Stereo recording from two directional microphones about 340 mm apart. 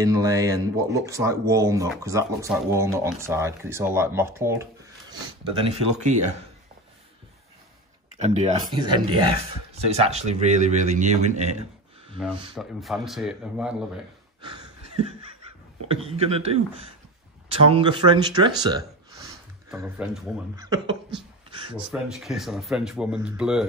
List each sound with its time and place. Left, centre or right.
0.0 s speech: centre
8.2 s speech: centre
12.5 s speech: centre
15.9 s speech: centre